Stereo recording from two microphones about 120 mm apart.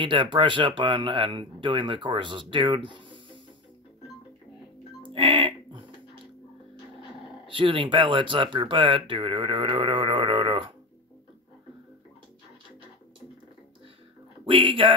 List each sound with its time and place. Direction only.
0.0 s speech: 45° right (ahead or behind)
5.0 s music: 45° right (ahead or behind)
7.4 s speech: 45° right (ahead or behind)
14.4 s speech: 45° right (ahead or behind)